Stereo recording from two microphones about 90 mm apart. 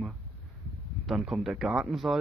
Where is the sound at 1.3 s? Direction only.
Centre (ahead or behind).